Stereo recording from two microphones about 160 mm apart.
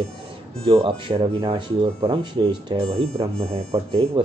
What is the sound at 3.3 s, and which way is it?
Speech, 40° right (ahead or behind).